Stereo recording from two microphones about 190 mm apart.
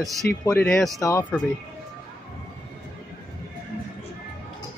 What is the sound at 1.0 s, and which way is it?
Speech, 15° left (ahead or behind).